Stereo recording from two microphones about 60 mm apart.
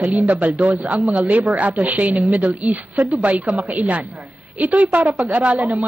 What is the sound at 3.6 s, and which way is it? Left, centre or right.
A woman's voice, right.